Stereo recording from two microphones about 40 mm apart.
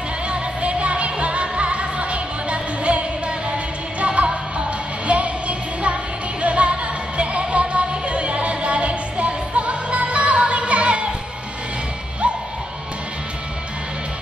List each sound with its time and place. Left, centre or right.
0.3 s music: right